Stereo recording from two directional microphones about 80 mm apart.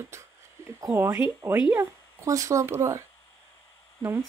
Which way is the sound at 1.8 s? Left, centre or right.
Right.